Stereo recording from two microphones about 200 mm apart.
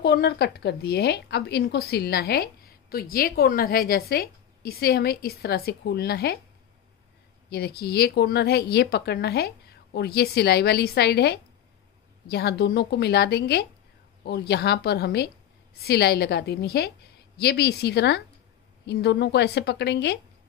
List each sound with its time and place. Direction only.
0.0 s a woman's voice: 55° left (ahead or behind)
7.4 s a woman's voice: 50° left (ahead or behind)